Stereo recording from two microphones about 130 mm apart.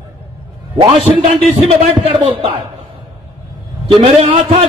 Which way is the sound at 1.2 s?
50° right (ahead or behind).